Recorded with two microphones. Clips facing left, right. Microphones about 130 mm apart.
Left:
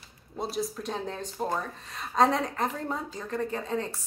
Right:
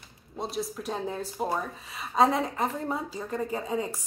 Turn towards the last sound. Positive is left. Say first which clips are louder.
# right 1 dB
turn(degrees=-10)  # may be behind; listen again after turning